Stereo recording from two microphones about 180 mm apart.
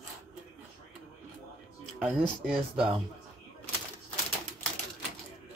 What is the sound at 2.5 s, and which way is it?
Speech, 30° right (ahead or behind).